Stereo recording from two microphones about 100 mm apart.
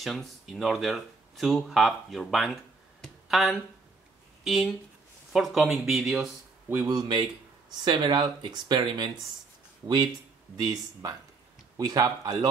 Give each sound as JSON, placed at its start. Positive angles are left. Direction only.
{"t": 0.0, "sound": "speech", "side_deg": 0}
{"t": 6.9, "sound": "speech", "side_deg": -45}
{"t": 10.5, "sound": "speech", "side_deg": -40}